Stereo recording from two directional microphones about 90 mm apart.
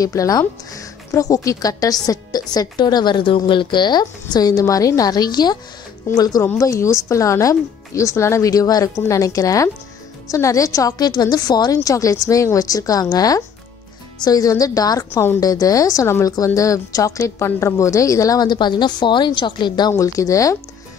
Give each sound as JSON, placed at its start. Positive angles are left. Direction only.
{"t": 0.0, "sound": "a woman's voice", "side_deg": 40}
{"t": 6.6, "sound": "a woman's voice", "side_deg": 35}
{"t": 11.7, "sound": "a woman's voice", "side_deg": 40}
{"t": 19.9, "sound": "speech", "side_deg": 40}